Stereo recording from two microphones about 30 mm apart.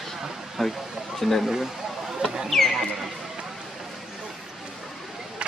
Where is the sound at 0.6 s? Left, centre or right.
Centre.